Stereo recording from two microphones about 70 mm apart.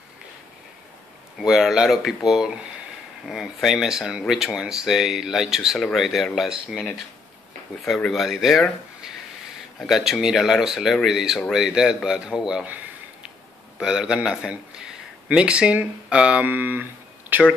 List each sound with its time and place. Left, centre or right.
1.4 s speech: centre
7.8 s speech: centre
9.8 s speech: centre
12.6 s a sound: right
13.7 s speech: centre
16.4 s speech: right
17.3 s a sound: right